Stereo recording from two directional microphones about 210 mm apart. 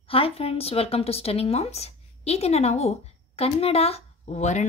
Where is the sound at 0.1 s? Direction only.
25° left (ahead or behind).